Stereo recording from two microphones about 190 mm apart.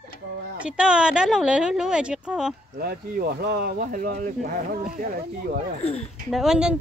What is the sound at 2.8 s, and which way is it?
Speech, 50° right (ahead or behind).